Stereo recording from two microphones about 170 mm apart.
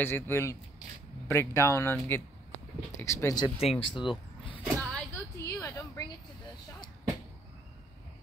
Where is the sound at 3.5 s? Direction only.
35° left (ahead or behind).